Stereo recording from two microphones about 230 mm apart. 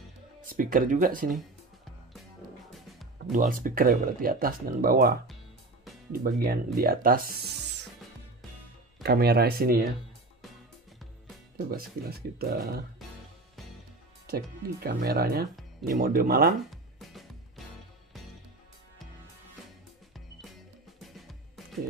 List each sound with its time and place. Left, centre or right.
0.5 s speech: right
2.7 s music: centre
3.3 s speech: right
6.2 s speech: right
9.0 s speech: right
11.7 s speech: right
14.2 s speech: right
16.7 s music: centre
21.0 s music: centre